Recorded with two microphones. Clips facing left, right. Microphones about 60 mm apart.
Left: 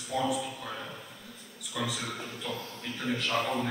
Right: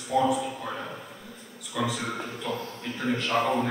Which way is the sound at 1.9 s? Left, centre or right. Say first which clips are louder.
Right 5 dB; centre.